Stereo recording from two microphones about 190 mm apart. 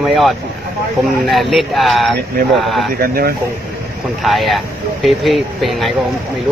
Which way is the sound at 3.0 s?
50° right (ahead or behind).